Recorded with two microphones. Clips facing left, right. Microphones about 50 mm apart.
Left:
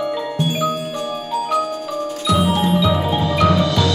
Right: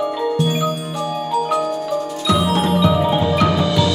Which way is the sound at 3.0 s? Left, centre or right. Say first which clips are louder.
Right 1 dB; centre.